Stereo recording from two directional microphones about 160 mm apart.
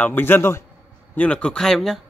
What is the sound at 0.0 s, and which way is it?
A man's voice, 10° left (ahead or behind).